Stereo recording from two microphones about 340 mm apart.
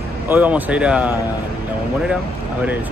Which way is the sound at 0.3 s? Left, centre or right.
Centre.